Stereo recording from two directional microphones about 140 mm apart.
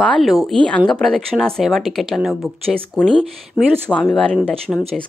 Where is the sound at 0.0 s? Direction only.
Centre (ahead or behind).